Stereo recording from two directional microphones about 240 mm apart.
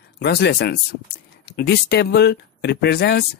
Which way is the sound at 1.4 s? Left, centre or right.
Left.